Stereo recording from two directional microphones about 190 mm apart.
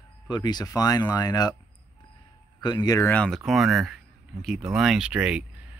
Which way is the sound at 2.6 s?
20° left (ahead or behind).